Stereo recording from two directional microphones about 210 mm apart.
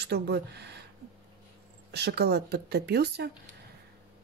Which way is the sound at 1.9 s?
50° right (ahead or behind).